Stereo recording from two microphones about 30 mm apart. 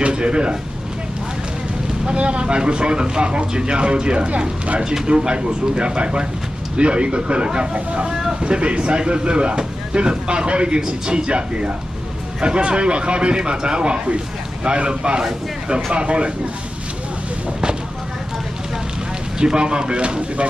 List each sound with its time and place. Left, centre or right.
0.0 s speech: right
2.1 s a man's voice: right
19.4 s a man's voice: right